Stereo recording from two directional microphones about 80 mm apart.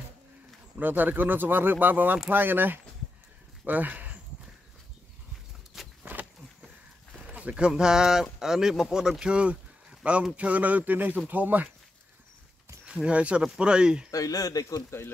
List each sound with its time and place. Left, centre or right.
0.7 s speech: right
5.7 s a sound: centre
7.2 s speech: centre
12.8 s speech: centre
14.1 s speech: left